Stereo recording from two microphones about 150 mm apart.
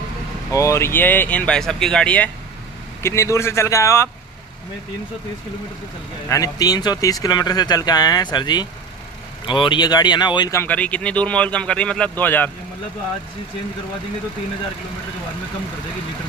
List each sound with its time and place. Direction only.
0.5 s speech: 20° left (ahead or behind)
6.2 s speech: 20° left (ahead or behind)
10.6 s speech: 10° left (ahead or behind)